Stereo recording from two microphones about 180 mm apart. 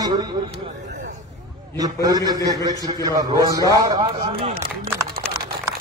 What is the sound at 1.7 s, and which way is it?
A man's voice, 20° right (ahead or behind).